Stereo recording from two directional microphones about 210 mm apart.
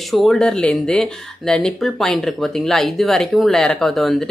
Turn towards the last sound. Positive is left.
turn(degrees=0)  # may be behind; listen again after turning